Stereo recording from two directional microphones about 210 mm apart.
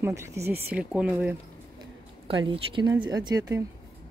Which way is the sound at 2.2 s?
25° right (ahead or behind).